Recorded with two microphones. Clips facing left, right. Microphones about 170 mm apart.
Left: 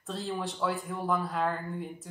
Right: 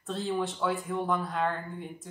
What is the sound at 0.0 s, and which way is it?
Speech, centre (ahead or behind).